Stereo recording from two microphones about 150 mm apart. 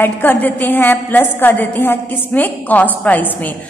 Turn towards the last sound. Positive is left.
turn(degrees=10)  # may be behind; listen again after turning